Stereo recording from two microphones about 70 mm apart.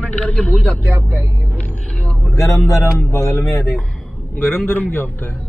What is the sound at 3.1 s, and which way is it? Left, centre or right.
Speech, left.